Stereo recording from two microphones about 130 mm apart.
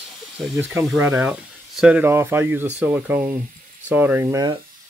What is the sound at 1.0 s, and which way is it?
Speech, 15° right (ahead or behind).